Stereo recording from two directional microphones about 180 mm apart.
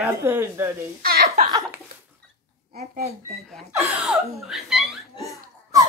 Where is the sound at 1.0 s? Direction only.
55° right (ahead or behind).